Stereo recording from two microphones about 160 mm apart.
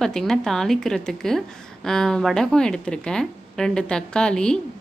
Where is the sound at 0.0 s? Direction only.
5° left (ahead or behind).